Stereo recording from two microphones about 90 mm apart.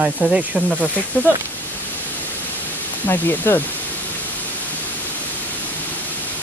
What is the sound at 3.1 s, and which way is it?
Speech, 25° left (ahead or behind).